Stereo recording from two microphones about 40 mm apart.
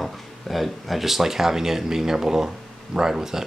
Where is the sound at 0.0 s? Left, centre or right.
Centre.